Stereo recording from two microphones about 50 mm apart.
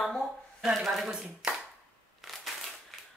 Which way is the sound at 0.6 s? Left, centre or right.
Centre.